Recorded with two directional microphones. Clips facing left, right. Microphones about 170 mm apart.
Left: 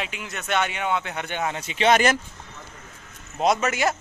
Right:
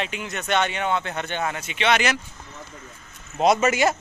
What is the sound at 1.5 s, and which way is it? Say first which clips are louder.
Speech: left 4 dB; 35° left (ahead or behind).